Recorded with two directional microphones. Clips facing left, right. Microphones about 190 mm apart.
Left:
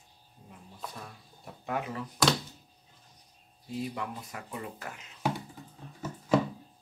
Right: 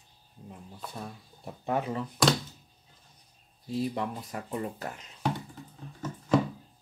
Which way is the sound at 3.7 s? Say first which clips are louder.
Right 5 dB; 35° right (ahead or behind).